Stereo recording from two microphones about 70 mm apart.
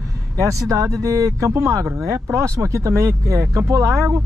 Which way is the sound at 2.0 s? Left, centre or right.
Right.